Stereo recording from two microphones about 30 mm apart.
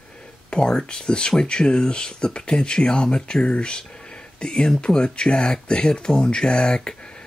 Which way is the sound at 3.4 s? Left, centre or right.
Left.